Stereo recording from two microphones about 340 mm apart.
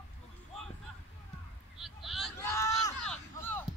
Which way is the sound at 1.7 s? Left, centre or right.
Centre.